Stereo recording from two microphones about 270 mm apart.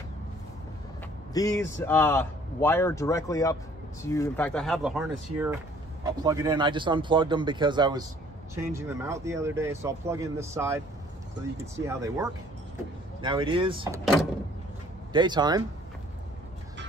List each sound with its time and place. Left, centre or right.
1.3 s speech: centre
15.1 s speech: centre